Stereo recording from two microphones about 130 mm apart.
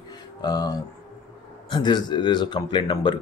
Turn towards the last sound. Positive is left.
turn(degrees=35)  # may be behind; listen again after turning